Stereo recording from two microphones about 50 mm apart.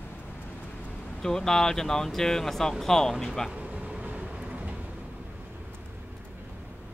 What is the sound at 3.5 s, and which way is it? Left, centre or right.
Vehicle, right.